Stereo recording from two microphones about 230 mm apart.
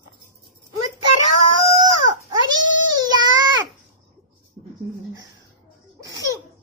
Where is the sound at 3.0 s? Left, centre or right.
Centre.